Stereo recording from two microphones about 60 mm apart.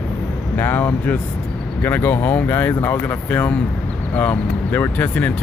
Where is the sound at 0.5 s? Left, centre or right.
Left.